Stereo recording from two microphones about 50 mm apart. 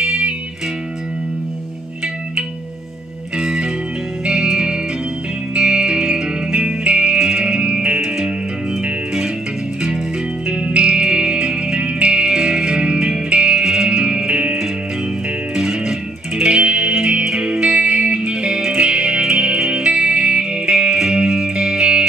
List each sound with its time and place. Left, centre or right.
0.0 s music: centre
3.4 s music: centre
10.5 s music: right